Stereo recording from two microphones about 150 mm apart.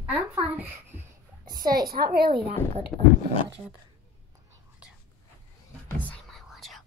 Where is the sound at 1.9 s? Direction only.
90° right.